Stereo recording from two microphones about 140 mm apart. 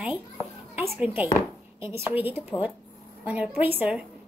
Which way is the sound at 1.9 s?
10° right (ahead or behind).